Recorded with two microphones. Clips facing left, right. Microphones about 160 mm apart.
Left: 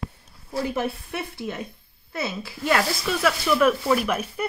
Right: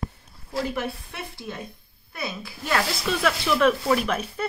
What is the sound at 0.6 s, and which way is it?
Speech, 20° left (ahead or behind).